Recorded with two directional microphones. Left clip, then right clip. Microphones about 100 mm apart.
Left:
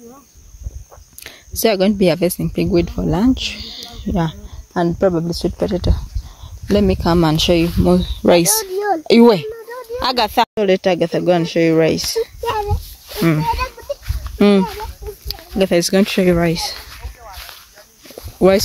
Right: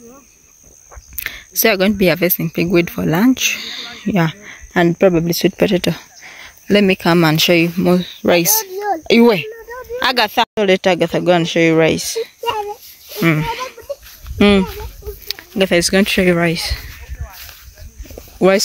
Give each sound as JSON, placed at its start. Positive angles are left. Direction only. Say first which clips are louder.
{"t": 1.2, "sound": "speech", "louder": "right 2 dB", "side_deg": 5}
{"t": 3.9, "sound": "a sound", "louder": "right 3 dB", "side_deg": -30}
{"t": 4.8, "sound": "speech", "louder": "right 3 dB", "side_deg": -60}
{"t": 6.7, "sound": "speech", "louder": "right 3 dB", "side_deg": -10}
{"t": 8.0, "sound": "speech", "louder": "left 1 dB", "side_deg": 25}
{"t": 9.9, "sound": "speech", "louder": "right 1 dB", "side_deg": 0}
{"t": 13.1, "sound": "a sound", "louder": "even", "side_deg": 0}
{"t": 14.4, "sound": "speech", "louder": "right 1 dB", "side_deg": 0}
{"t": 18.0, "sound": "walk", "louder": "even", "side_deg": 5}